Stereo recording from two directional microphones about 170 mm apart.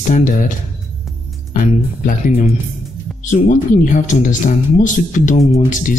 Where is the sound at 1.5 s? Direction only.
50° left (ahead or behind).